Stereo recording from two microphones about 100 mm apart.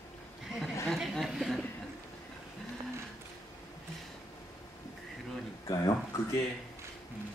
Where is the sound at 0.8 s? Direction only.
Centre (ahead or behind).